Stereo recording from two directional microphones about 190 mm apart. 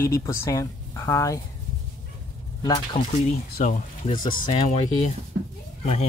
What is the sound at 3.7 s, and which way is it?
Speech, 40° left (ahead or behind).